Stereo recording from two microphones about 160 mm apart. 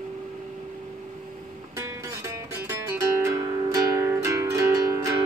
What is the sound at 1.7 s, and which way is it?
Music, 20° right (ahead or behind).